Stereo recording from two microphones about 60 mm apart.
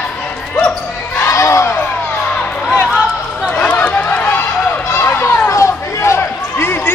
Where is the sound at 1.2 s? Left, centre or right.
Left.